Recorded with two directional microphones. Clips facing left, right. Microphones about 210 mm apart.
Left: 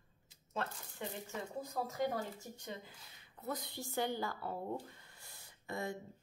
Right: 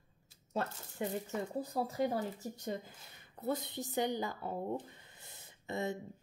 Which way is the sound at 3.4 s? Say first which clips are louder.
Right 6 dB; 25° right (ahead or behind).